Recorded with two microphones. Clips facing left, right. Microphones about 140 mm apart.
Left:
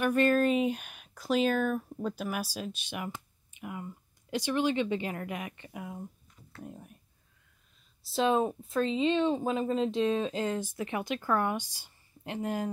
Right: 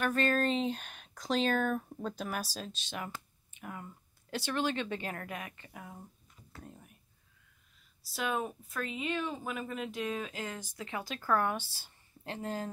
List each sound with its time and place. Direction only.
0.0 s speech: 10° left (ahead or behind)
8.1 s speech: 25° left (ahead or behind)